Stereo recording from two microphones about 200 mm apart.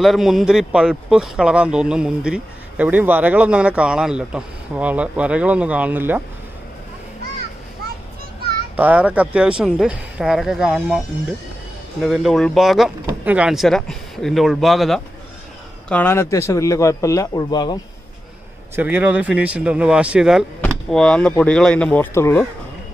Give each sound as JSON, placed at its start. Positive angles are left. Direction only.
{"t": 0.0, "sound": "speech", "side_deg": 0}
{"t": 8.7, "sound": "speech", "side_deg": -10}
{"t": 12.0, "sound": "speech", "side_deg": 0}
{"t": 15.9, "sound": "a man's voice", "side_deg": 10}
{"t": 18.8, "sound": "speech", "side_deg": -10}